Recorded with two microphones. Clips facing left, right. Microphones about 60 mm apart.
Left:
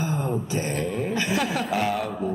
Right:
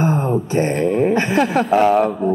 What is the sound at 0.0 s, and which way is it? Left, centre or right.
Speech, right.